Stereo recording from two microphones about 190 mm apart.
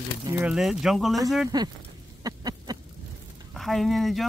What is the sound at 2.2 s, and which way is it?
Duck, 20° right (ahead or behind).